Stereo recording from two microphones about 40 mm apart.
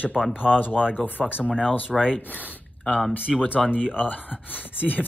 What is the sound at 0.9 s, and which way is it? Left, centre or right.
Speech, left.